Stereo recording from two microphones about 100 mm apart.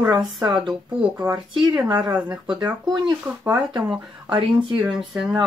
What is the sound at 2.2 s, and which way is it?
Speech, 40° right (ahead or behind).